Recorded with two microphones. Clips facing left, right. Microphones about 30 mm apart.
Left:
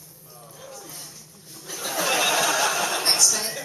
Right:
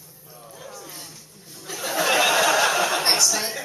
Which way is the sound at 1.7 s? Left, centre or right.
Centre.